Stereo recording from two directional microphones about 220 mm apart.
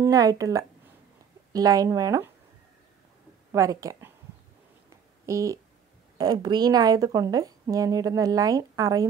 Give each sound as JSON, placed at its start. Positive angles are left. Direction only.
{"t": 0.0, "sound": "a woman's voice", "side_deg": -15}
{"t": 3.5, "sound": "a woman's voice", "side_deg": -15}
{"t": 4.8, "sound": "a sound", "side_deg": -15}
{"t": 6.1, "sound": "a woman's voice", "side_deg": -20}